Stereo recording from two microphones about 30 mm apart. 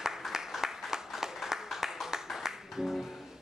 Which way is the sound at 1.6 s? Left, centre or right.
Centre.